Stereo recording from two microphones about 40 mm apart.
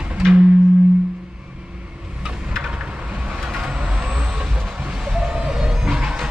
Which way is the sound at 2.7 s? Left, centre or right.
Right.